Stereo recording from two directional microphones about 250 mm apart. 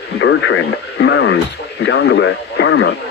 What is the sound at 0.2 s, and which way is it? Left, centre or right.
Speech, left.